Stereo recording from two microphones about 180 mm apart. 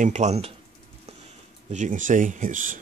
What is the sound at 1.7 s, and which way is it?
Speech, 45° right (ahead or behind).